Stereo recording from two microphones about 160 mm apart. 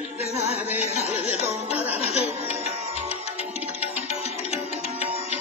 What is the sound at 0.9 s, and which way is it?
Music, 45° right (ahead or behind).